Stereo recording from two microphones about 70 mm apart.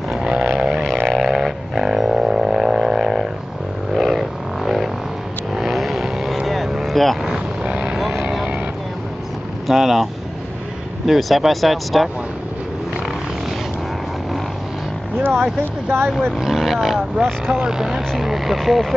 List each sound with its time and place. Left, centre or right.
0.1 s vehicle: centre
0.6 s a sound: centre
5.5 s vehicle: centre
7.2 s vehicle: centre
7.9 s vehicle: centre
9.7 s vehicle: centre
11.1 s speech: centre
16.1 s speech: centre
16.3 s roaring cats: centre
18.2 s speech: centre